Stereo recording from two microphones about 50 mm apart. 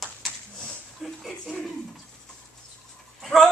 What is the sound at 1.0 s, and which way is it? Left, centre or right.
Speech, centre.